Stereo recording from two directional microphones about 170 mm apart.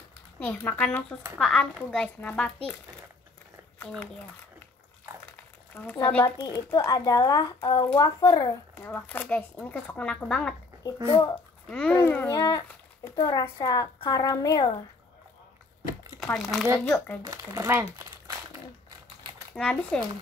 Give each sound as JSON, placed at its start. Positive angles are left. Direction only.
{"t": 0.4, "sound": "speech", "side_deg": 10}
{"t": 5.8, "sound": "speech", "side_deg": 10}
{"t": 6.3, "sound": "a child's voice", "side_deg": 25}
{"t": 11.1, "sound": "a child's voice", "side_deg": 30}
{"t": 11.6, "sound": "a child's voice", "side_deg": 5}
{"t": 16.2, "sound": "speech", "side_deg": 0}
{"t": 16.8, "sound": "speech", "side_deg": 15}
{"t": 17.2, "sound": "speech", "side_deg": -20}
{"t": 17.9, "sound": "crumpling", "side_deg": -20}
{"t": 19.5, "sound": "speech", "side_deg": 5}